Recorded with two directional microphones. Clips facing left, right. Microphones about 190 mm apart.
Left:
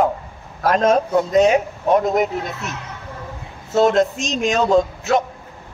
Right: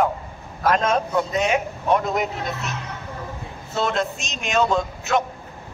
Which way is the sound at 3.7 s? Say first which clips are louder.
Left 8 dB; 45° left (ahead or behind).